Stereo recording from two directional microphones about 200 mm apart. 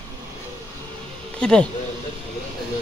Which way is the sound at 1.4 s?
5° left (ahead or behind).